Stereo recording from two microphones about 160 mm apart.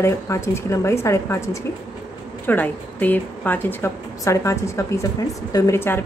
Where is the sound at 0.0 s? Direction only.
15° left (ahead or behind).